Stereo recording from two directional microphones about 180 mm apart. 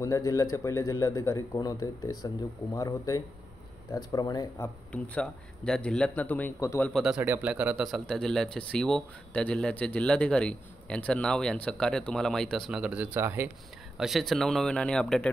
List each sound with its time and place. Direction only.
0.0 s a man's voice: 20° left (ahead or behind)
4.9 s a man's voice: 5° left (ahead or behind)
6.9 s speech: centre (ahead or behind)